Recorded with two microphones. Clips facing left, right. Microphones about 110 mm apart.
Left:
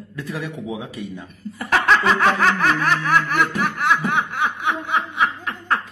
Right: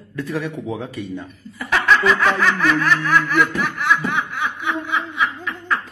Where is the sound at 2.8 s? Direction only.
50° left (ahead or behind).